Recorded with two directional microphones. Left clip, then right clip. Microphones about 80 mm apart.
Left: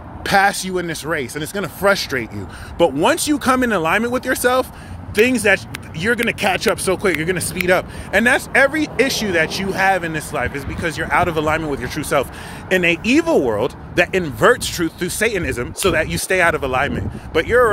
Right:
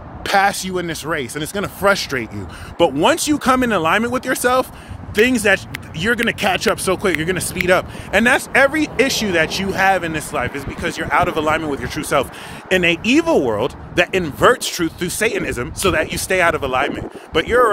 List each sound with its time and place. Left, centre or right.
0.2 s speech: centre
5.1 s speech: right
10.4 s speech: right